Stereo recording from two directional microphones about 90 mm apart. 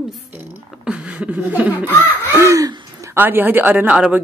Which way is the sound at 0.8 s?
10° right (ahead or behind).